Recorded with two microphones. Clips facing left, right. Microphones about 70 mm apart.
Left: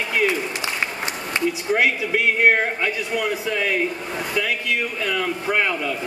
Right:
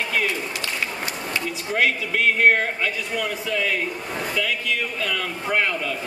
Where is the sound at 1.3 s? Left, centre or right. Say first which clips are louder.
Left 6 dB; centre.